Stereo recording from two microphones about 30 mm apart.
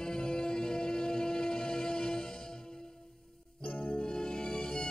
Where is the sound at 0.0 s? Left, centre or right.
Left.